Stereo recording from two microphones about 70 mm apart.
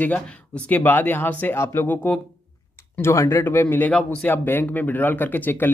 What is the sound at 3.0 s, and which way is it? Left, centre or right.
Speech, left.